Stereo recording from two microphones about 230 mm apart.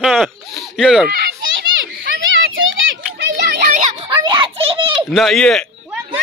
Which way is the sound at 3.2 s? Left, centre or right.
Right.